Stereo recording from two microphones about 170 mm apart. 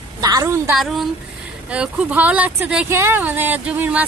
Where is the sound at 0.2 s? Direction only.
20° right (ahead or behind).